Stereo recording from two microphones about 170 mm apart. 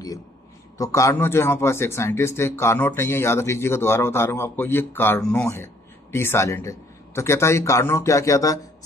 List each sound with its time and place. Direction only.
0.7 s a man's voice: 20° left (ahead or behind)